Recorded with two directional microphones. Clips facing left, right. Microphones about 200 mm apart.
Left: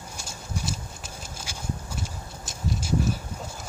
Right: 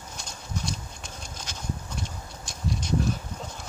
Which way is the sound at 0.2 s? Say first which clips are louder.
Left 1 dB; 5° left (ahead or behind).